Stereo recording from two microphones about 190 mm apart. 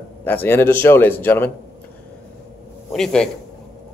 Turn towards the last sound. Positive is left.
turn(degrees=5)  # may be behind; listen again after turning